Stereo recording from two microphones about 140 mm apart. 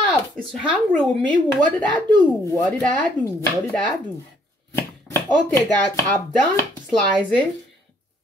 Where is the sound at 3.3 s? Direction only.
20° left (ahead or behind).